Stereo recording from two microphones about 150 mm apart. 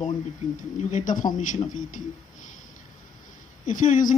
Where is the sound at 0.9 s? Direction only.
55° left (ahead or behind).